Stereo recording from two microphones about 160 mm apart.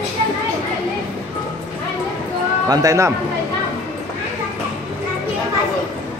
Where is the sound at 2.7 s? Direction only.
20° right (ahead or behind).